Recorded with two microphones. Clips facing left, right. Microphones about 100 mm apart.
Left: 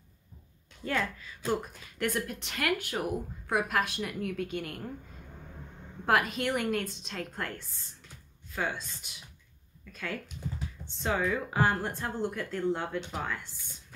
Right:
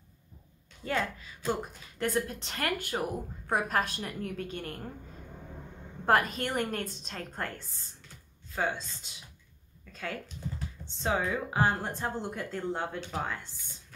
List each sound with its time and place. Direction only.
0.8 s a woman's voice: 25° right (ahead or behind); by 4.8 s 40° right (ahead or behind)
6.0 s a woman's voice: 40° right (ahead or behind)
11.0 s speech: 25° right (ahead or behind)